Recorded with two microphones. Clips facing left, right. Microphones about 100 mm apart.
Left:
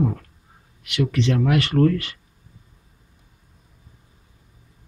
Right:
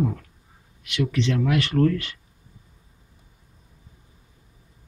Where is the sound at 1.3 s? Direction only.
50° left (ahead or behind).